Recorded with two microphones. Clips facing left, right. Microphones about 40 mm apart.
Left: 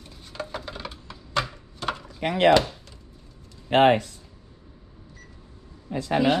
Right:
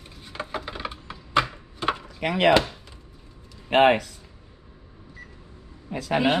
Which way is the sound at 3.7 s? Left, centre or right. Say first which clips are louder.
Even; right.